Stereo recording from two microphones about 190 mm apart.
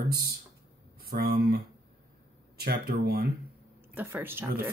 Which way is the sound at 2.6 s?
55° right (ahead or behind).